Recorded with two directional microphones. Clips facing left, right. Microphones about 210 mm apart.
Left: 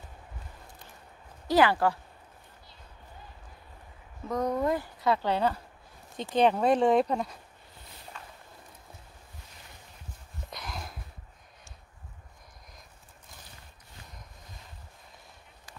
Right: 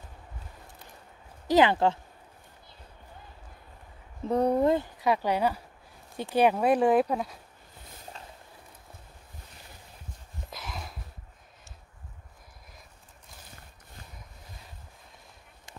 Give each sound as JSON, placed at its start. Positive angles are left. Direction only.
{"t": 1.5, "sound": "speech", "side_deg": -20}
{"t": 4.3, "sound": "speech", "side_deg": -30}
{"t": 5.0, "sound": "speech", "side_deg": -15}
{"t": 10.5, "sound": "a sound", "side_deg": 0}